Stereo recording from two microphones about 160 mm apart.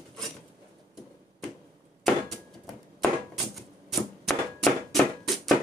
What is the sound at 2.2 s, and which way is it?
Typewriter, centre (ahead or behind).